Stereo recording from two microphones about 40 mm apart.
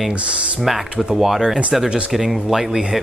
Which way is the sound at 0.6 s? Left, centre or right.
Centre.